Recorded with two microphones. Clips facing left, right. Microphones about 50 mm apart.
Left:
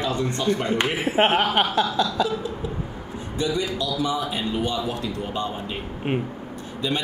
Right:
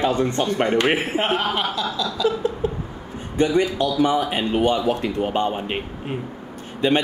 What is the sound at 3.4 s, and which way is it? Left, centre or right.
A man's voice, right.